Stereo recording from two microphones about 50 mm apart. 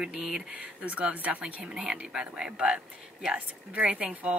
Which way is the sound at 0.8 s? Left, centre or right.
Right.